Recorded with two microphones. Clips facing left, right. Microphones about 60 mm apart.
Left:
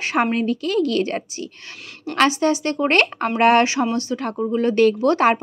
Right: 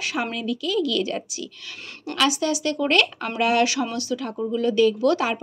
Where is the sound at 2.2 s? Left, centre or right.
Left.